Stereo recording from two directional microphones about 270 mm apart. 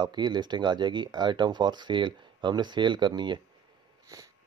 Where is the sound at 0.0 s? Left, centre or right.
Centre.